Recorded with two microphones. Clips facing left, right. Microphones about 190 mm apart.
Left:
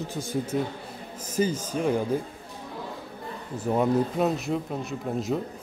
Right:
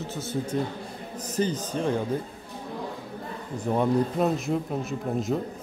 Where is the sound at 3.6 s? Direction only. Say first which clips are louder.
Even; 5° left (ahead or behind).